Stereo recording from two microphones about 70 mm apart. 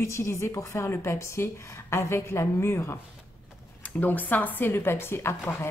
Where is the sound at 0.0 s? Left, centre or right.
Left.